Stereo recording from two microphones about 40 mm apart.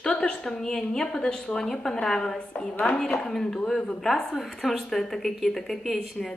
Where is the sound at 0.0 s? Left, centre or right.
Left.